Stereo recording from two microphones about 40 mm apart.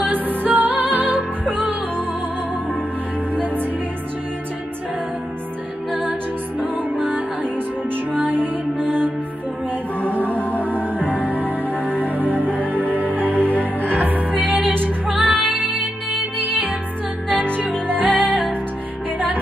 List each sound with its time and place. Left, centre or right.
0.0 s music: right
3.3 s music: right
6.6 s music: right
9.9 s mantra: right
10.6 s music: right
15.0 s music: right